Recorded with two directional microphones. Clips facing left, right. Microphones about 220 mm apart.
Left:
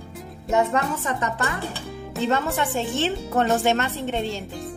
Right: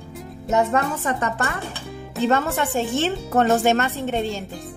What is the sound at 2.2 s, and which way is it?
Music, centre (ahead or behind).